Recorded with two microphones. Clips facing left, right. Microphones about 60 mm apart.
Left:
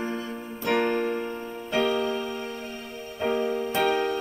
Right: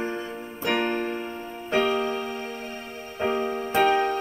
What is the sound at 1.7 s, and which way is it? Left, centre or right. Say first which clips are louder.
Music: right 1 dB; right.